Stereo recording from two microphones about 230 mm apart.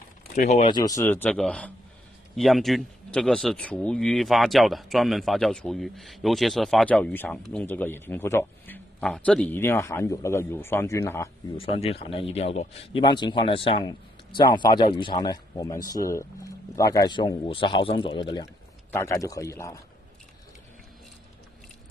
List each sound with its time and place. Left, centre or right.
0.3 s speech: left; by 19.8 s centre